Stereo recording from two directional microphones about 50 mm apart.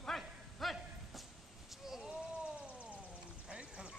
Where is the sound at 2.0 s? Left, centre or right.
Right.